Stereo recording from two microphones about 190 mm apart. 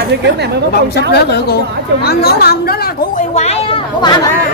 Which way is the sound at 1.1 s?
60° left (ahead or behind).